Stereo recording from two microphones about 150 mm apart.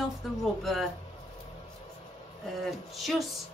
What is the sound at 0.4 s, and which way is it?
Speech, centre (ahead or behind).